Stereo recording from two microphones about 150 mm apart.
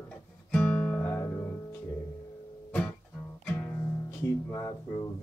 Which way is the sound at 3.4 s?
15° left (ahead or behind).